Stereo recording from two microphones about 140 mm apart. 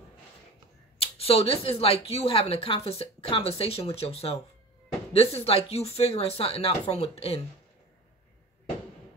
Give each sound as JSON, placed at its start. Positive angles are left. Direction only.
{"t": 0.9, "sound": "speech", "side_deg": 45}